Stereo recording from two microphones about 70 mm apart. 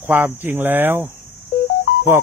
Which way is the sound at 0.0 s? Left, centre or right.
Right.